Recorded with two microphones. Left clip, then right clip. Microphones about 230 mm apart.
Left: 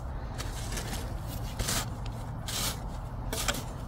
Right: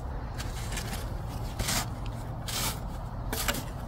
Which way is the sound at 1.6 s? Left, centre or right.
Centre.